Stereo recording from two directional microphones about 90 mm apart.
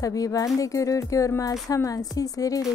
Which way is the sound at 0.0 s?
40° left (ahead or behind).